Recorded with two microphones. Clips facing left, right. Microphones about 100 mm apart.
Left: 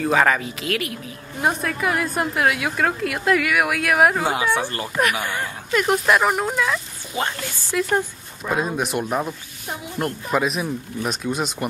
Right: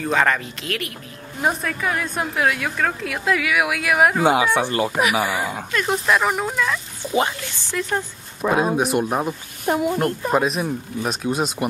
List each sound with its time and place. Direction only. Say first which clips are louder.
0.0 s a woman's voice: left 1 dB; 5° left (ahead or behind)
4.2 s speech: right 4 dB; 15° right (ahead or behind)
4.9 s speech: right 2 dB; 10° right (ahead or behind)
5.7 s a woman's voice: left 3 dB; 5° left (ahead or behind)
8.4 s speech: right 5 dB; 90° right
8.7 s a woman's voice: right 3 dB; 5° right (ahead or behind)
9.7 s a woman's voice: right 11 dB; 70° right (ahead or behind)
10.3 s a woman's voice: left 1 dB; centre (ahead or behind)